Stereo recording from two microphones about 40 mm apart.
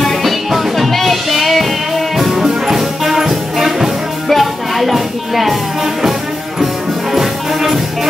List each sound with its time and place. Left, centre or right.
0.0 s music: centre
6.6 s music: centre